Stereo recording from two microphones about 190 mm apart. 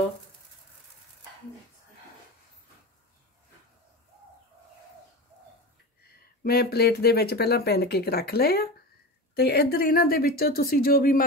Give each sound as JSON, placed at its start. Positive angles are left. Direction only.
{"t": 6.0, "sound": "speech", "side_deg": 55}